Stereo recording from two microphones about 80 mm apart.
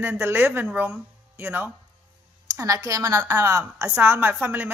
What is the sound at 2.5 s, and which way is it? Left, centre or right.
A woman's voice, right.